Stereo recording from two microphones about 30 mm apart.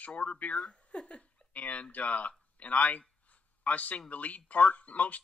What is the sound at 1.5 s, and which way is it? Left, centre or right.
Speech, left.